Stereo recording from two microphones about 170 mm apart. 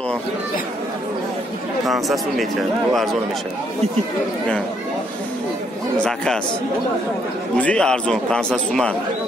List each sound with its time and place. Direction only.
1.9 s a man's voice: centre (ahead or behind)
6.0 s a man's voice: 5° left (ahead or behind)
7.5 s a man's voice: 5° left (ahead or behind)